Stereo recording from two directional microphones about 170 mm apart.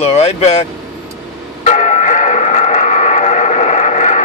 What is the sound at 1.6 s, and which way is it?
Bell, 40° left (ahead or behind).